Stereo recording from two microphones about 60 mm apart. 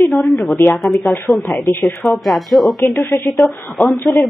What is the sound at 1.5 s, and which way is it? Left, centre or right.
Speech, left.